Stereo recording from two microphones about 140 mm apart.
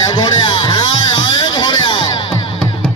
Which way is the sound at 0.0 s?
30° left (ahead or behind).